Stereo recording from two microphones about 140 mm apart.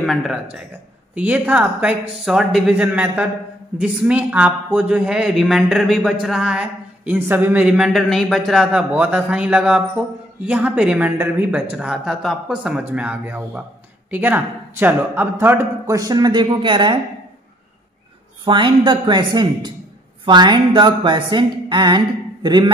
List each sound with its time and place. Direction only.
0.0 s a man's voice: centre (ahead or behind); by 17.0 s 35° right (ahead or behind)
18.4 s a woman's voice: 35° right (ahead or behind)
18.9 s a sound: 35° right (ahead or behind)